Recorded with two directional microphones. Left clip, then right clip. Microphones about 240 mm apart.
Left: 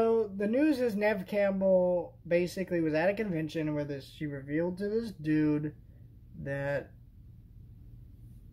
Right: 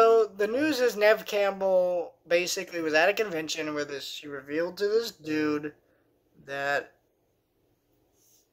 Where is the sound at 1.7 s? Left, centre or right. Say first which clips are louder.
Right 1 dB; right.